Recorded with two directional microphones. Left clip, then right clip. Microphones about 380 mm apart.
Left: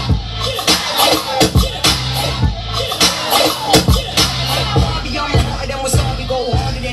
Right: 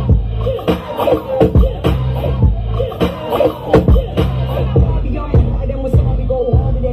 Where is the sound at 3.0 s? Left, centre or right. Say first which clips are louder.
Left 2 dB; left.